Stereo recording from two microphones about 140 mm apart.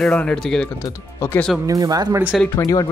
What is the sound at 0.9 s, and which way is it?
Speech, 15° left (ahead or behind).